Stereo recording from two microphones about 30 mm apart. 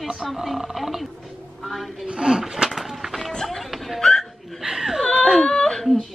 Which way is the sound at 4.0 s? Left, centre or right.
Centre.